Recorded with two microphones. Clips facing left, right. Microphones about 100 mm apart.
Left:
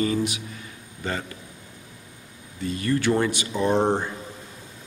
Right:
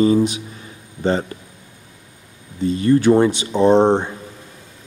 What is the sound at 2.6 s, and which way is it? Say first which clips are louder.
Speech: right 9 dB; 25° right (ahead or behind).